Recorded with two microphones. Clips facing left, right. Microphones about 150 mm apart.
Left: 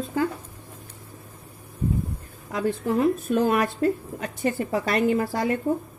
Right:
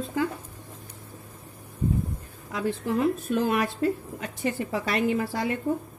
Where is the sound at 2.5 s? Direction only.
40° left (ahead or behind).